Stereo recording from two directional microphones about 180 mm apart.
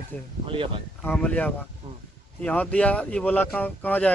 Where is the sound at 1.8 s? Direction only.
25° right (ahead or behind).